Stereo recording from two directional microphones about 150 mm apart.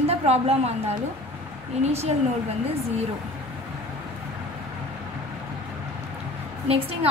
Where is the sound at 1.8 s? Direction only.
45° right (ahead or behind).